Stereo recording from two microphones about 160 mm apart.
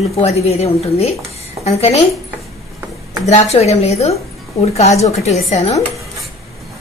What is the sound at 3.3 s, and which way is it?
Speech, 40° left (ahead or behind).